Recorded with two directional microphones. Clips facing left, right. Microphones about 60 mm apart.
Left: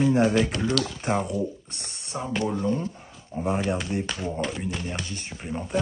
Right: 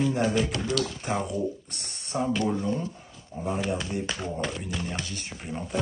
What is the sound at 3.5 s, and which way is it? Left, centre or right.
Speech, left.